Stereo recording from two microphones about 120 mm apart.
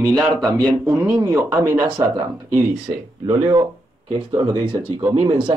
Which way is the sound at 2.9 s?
45° right (ahead or behind).